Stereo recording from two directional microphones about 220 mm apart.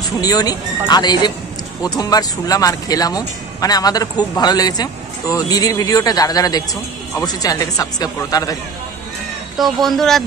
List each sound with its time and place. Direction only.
0.2 s a man's voice: 15° left (ahead or behind)
9.6 s speech: centre (ahead or behind)